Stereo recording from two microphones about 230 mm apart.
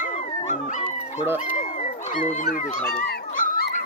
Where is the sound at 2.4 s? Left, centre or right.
Left.